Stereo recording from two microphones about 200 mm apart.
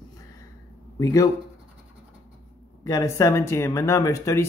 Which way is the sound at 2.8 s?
15° left (ahead or behind).